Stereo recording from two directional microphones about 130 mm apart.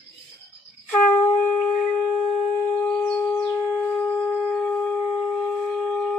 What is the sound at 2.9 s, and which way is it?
Shofar, 10° left (ahead or behind).